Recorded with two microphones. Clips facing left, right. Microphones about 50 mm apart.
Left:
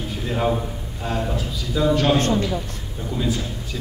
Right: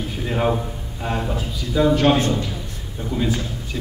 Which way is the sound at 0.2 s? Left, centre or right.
Centre.